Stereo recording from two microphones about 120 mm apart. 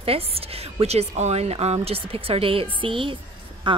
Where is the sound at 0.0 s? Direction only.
55° right (ahead or behind).